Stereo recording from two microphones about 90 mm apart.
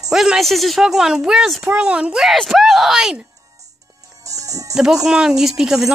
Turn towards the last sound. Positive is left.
turn(degrees=-5)  # may be behind; listen again after turning